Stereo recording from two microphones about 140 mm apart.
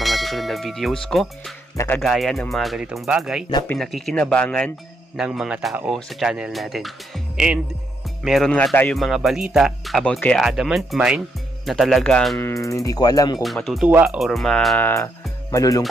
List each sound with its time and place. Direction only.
0.0 s bell: centre (ahead or behind)
2.0 s speech: centre (ahead or behind)
5.1 s speech: 5° right (ahead or behind)
8.5 s speech: 10° left (ahead or behind)
12.4 s speech: 20° left (ahead or behind)
13.4 s speech: centre (ahead or behind)
13.8 s speech: 15° right (ahead or behind)
14.1 s speech: centre (ahead or behind)
14.8 s speech: 15° left (ahead or behind)
15.5 s speech: 25° left (ahead or behind)